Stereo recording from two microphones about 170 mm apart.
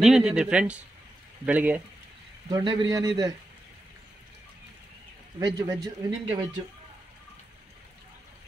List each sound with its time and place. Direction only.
0.0 s speech: 5° right (ahead or behind)
2.5 s speech: 25° right (ahead or behind)
5.4 s speech: 25° right (ahead or behind)